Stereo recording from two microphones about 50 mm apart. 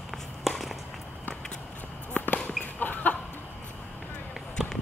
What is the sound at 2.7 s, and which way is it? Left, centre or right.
Chicken, left.